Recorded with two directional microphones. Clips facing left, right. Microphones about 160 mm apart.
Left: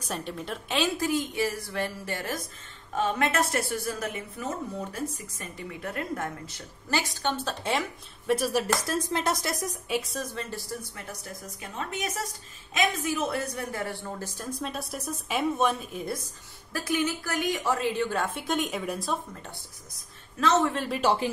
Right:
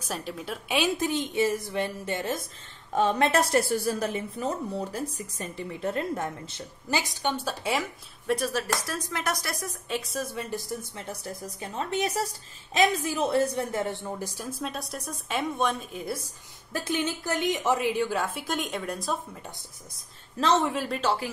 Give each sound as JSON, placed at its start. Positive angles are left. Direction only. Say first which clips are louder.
{"t": 0.0, "sound": "a woman's voice", "louder": "even", "side_deg": -5}
{"t": 2.9, "sound": "a woman's voice", "louder": "right 3 dB", "side_deg": -35}
{"t": 8.8, "sound": "speech", "louder": "left 3 dB", "side_deg": 25}
{"t": 9.8, "sound": "a woman's voice", "louder": "even", "side_deg": 0}
{"t": 10.2, "sound": "a woman's voice", "louder": "right 2 dB", "side_deg": -15}
{"t": 14.6, "sound": "a woman's voice", "louder": "right 1 dB", "side_deg": 0}
{"t": 16.7, "sound": "a woman's voice", "louder": "left 1 dB", "side_deg": -25}
{"t": 18.1, "sound": "a woman's voice", "louder": "left 1 dB", "side_deg": 0}
{"t": 20.3, "sound": "speech", "louder": "even", "side_deg": -30}
{"t": 20.6, "sound": "speech", "louder": "even", "side_deg": -5}
{"t": 21.0, "sound": "speech", "louder": "left 4 dB", "side_deg": 15}